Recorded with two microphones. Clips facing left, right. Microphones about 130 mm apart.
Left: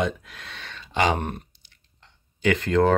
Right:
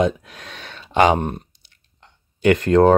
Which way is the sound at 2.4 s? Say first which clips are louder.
Right 6 dB; 45° right (ahead or behind).